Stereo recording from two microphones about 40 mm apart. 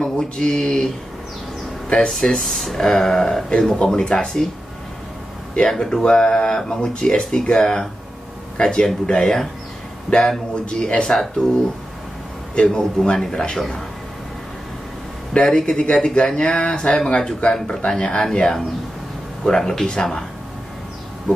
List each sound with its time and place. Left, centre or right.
0.0 s speech: centre
2.0 s speech: centre
5.6 s speech: centre
12.5 s speech: left
15.3 s speech: left